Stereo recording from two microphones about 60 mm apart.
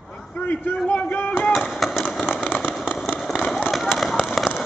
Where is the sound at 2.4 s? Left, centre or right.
Left.